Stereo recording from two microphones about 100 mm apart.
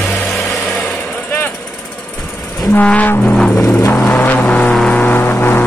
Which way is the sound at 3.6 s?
25° left (ahead or behind).